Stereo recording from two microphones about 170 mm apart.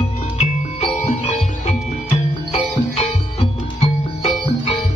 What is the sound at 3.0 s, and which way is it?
Music, 40° left (ahead or behind).